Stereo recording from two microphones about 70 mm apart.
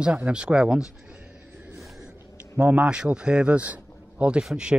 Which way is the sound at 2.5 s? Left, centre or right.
Centre.